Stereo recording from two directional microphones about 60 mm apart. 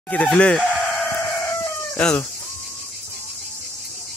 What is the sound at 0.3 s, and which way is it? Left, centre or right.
Speech, centre.